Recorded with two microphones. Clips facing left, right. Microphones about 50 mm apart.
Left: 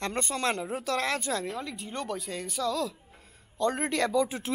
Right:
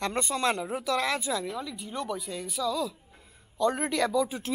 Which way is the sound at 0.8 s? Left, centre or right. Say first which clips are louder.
Right 1 dB; centre.